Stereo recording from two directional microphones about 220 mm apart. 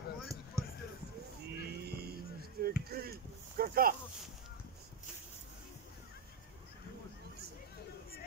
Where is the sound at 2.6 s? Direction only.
45° right (ahead or behind).